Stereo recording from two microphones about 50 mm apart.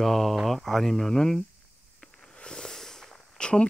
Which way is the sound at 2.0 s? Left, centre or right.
Centre.